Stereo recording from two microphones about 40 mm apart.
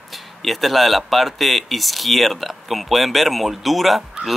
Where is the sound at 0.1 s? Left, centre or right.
Centre.